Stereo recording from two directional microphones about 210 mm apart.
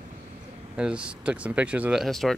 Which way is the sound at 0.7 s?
5° right (ahead or behind).